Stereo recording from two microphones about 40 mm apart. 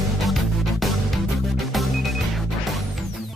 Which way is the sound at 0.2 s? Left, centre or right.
Centre.